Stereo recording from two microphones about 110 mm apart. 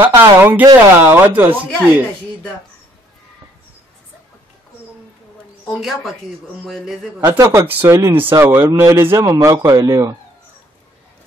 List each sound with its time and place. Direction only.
0.0 s speech: 20° right (ahead or behind)
5.7 s a man's voice: centre (ahead or behind)
7.2 s speech: 30° right (ahead or behind)
7.6 s a man's voice: 20° right (ahead or behind); by 10.1 s 35° right (ahead or behind)